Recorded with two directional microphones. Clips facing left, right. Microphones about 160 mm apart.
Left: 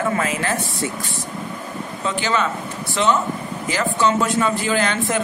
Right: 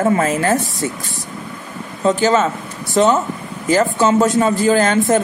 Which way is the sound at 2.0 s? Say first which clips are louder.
Right 8 dB; 40° right (ahead or behind).